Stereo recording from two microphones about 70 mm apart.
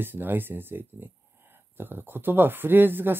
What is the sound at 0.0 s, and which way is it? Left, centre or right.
Speech, right.